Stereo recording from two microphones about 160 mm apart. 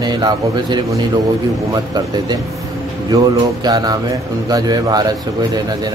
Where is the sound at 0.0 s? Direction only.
25° right (ahead or behind).